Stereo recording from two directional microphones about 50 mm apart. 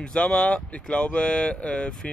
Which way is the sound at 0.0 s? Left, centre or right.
Centre.